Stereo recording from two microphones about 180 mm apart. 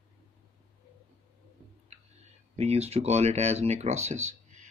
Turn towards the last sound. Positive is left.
turn(degrees=-40)  # may be behind; listen again after turning